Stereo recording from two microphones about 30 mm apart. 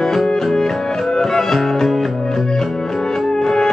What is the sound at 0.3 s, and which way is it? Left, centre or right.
Music, centre.